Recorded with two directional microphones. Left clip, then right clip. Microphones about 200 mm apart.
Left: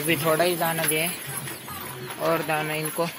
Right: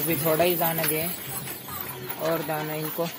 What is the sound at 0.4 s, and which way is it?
Speech, 15° right (ahead or behind).